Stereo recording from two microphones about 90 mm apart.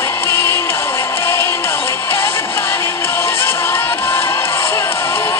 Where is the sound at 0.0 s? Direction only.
25° left (ahead or behind).